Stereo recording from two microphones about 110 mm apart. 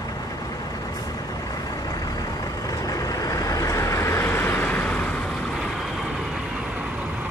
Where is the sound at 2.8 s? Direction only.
35° left (ahead or behind); by 5.0 s 15° left (ahead or behind).